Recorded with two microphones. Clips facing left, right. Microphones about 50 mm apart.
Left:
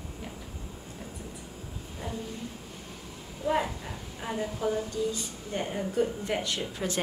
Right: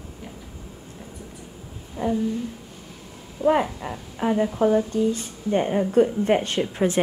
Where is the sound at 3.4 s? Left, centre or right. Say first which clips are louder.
Right 8 dB; right.